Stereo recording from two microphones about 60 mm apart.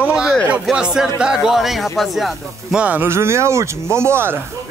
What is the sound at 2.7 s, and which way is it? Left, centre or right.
Speech, right.